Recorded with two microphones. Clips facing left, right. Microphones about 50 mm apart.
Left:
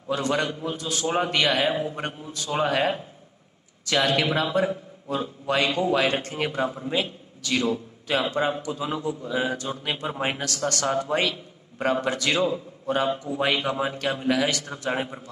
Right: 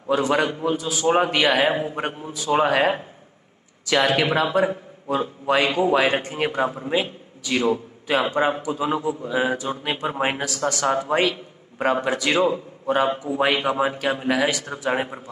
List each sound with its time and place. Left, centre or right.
0.1 s a man's voice: centre
0.7 s a man's voice: centre
1.0 s a man's voice: centre